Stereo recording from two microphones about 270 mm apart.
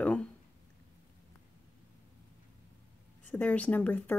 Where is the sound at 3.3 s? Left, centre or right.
Centre.